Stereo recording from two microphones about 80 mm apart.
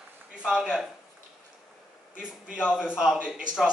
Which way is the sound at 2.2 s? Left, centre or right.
Centre.